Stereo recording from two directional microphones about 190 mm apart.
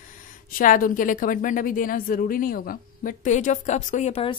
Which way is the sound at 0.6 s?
45° left (ahead or behind).